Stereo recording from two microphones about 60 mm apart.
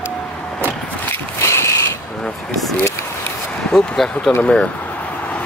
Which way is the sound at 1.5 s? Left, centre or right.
Left.